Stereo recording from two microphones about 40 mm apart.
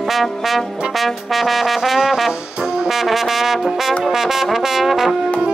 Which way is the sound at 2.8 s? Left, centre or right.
Centre.